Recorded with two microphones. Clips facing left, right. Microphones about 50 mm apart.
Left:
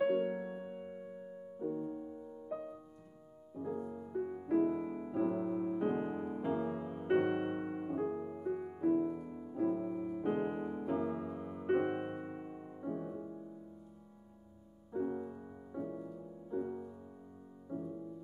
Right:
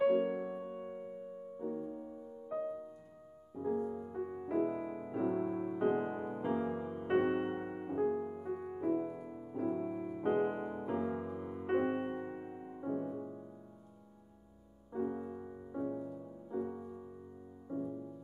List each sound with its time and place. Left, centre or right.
0.1 s music: centre
14.9 s music: centre